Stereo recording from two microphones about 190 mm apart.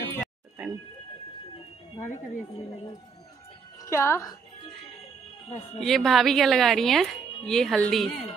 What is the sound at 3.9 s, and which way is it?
Speech, 15° left (ahead or behind).